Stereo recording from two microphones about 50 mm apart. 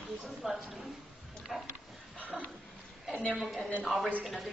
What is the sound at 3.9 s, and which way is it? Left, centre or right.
Speech, centre.